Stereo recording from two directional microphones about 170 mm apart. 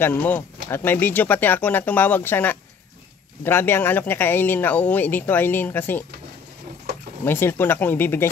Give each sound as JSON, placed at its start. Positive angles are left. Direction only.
{"t": 0.0, "sound": "speech", "side_deg": 10}
{"t": 7.2, "sound": "speech", "side_deg": 15}